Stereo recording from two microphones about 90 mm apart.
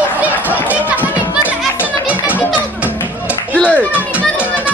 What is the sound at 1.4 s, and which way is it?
Music, 15° right (ahead or behind).